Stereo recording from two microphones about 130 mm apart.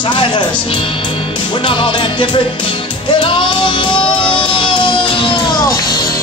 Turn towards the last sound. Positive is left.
turn(degrees=30)  # may be behind; listen again after turning